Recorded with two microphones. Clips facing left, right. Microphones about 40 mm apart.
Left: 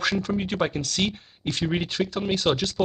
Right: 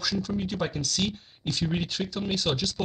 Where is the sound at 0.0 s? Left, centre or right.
Left.